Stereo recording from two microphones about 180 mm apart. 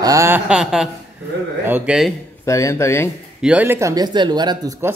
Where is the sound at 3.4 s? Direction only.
10° right (ahead or behind).